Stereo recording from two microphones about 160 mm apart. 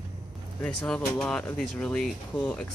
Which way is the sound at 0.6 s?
5° left (ahead or behind).